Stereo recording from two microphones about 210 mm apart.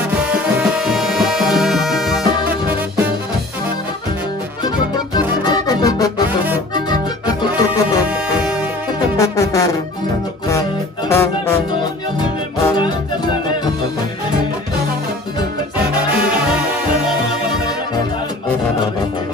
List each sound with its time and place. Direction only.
0.2 s music: 5° right (ahead or behind)
5.4 s music: 20° left (ahead or behind)
9.1 s music: 15° left (ahead or behind)
11.1 s music: 15° left (ahead or behind)